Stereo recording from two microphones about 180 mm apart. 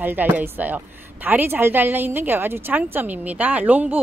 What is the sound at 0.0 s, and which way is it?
A woman's voice, 10° right (ahead or behind).